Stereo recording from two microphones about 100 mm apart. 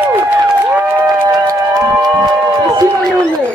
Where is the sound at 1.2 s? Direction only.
35° right (ahead or behind).